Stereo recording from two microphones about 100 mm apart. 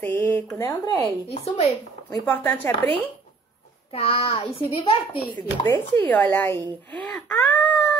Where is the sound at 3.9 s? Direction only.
80° left.